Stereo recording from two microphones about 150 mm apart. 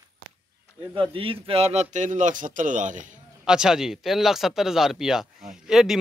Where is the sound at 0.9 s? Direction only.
35° right (ahead or behind); by 3.0 s 60° right (ahead or behind).